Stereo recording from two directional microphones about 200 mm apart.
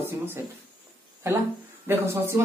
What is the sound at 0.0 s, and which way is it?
A man's voice, 10° right (ahead or behind).